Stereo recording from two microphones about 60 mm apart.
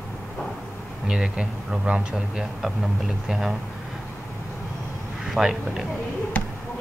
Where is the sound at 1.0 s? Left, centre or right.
Centre.